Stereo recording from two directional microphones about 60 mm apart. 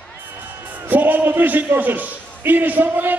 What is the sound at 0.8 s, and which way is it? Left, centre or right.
A man's voice, right.